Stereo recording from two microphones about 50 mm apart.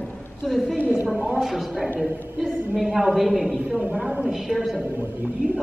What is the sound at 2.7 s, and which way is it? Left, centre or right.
Speech, centre.